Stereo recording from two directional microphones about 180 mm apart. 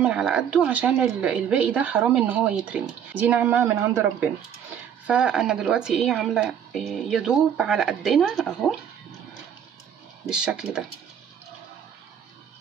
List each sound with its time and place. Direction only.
0.0 s a woman's voice: 5° right (ahead or behind)
10.2 s a woman's voice: 5° right (ahead or behind)